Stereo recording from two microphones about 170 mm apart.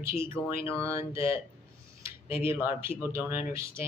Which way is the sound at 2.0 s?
15° right (ahead or behind).